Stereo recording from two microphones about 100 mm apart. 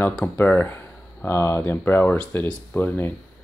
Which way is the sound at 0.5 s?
20° left (ahead or behind).